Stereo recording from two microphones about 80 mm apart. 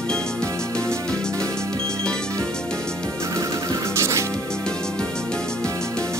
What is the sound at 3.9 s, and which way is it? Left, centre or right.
Music, right.